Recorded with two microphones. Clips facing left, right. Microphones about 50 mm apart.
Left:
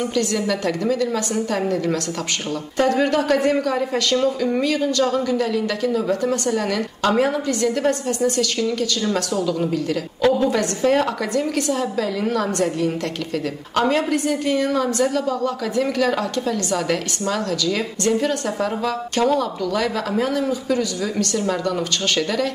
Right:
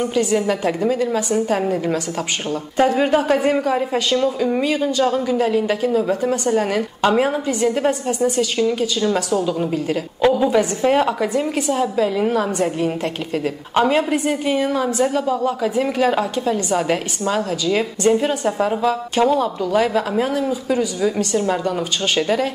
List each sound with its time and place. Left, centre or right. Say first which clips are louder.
0.0 s speech: right 3 dB; centre
2.9 s a woman's voice: left 1 dB; centre
20.1 s a woman's voice: right 1 dB; centre